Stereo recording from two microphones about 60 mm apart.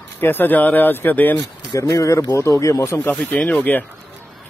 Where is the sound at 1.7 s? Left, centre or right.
Left.